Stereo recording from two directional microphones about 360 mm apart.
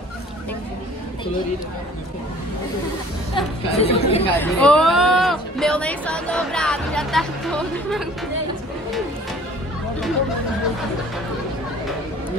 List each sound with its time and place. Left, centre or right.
3.3 s speech: centre
4.4 s speech: centre